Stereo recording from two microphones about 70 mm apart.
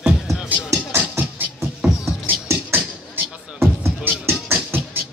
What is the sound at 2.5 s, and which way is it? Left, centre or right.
Music, right.